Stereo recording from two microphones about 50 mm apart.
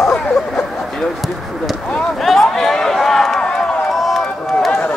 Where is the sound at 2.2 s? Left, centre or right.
Centre.